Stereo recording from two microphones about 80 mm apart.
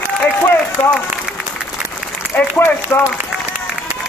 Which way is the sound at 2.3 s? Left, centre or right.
Left.